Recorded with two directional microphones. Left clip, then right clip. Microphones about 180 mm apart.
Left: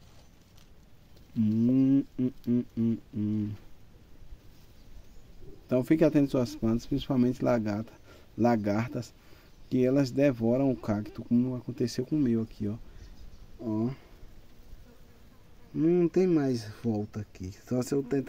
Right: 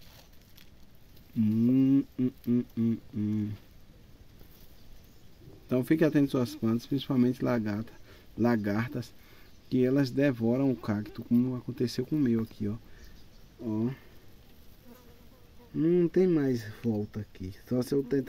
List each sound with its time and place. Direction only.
1.4 s a sound: 5° left (ahead or behind)
5.7 s speech: 5° left (ahead or behind)
15.8 s speech: centre (ahead or behind)